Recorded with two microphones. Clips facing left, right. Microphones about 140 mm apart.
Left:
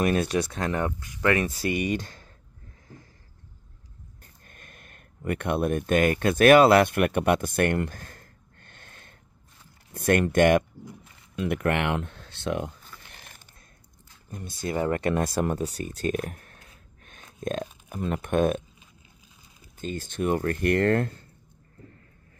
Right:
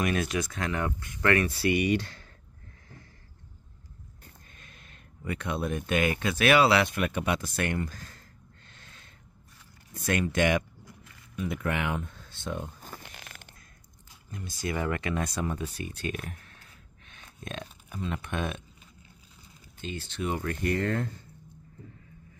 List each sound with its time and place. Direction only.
0.0 s speech: 35° left (ahead or behind)
0.9 s speech: 20° left (ahead or behind)
1.5 s speech: 40° left (ahead or behind)
4.5 s speech: 50° left (ahead or behind)
11.3 s speech: 70° left (ahead or behind); by 12.7 s 85° left
13.2 s a sound: 90° right
14.6 s speech: 25° left (ahead or behind)
15.1 s speech: 55° left (ahead or behind)
15.5 s speech: 40° left (ahead or behind)
19.8 s speech: 45° left (ahead or behind); by 21.1 s 65° left (ahead or behind)